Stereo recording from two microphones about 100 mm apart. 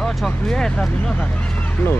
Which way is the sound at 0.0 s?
5° left (ahead or behind).